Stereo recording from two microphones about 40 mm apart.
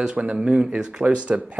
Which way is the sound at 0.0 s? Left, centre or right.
Right.